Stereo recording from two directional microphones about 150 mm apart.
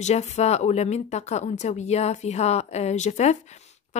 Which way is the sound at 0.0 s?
45° left (ahead or behind).